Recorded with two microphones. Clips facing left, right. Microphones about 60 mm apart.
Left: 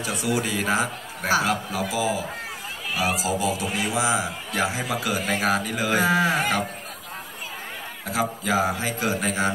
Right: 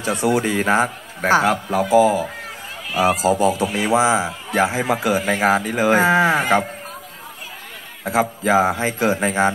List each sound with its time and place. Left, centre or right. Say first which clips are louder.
0.0 s a man's voice: right 7 dB; right
8.0 s a man's voice: right 7 dB; right